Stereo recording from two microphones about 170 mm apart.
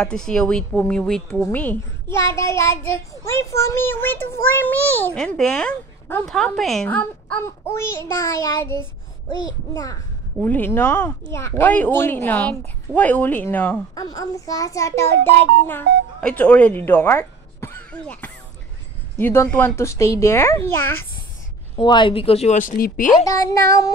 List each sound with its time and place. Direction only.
0.0 s speech: 5° left (ahead or behind)
10.4 s speech: 10° left (ahead or behind)
21.7 s speech: 25° left (ahead or behind)
22.6 s speech: 55° left (ahead or behind)
23.2 s speech: 20° left (ahead or behind)